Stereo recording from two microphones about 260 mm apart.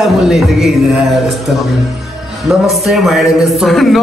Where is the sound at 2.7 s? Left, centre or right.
Centre.